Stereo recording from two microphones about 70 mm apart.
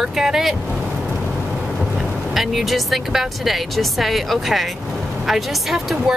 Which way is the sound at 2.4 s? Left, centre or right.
Centre.